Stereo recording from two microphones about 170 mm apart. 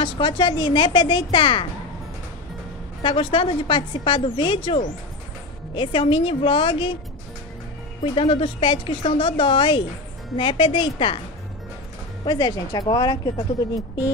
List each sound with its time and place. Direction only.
0.0 s a woman's voice: 30° left (ahead or behind)
3.0 s a woman's voice: 30° left (ahead or behind)
8.0 s a woman's voice: 30° left (ahead or behind)
12.3 s a woman's voice: 25° left (ahead or behind)